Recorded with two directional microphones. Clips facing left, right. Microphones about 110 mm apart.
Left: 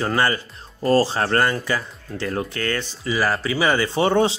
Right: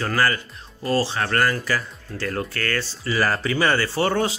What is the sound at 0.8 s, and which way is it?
Speech, 40° left (ahead or behind).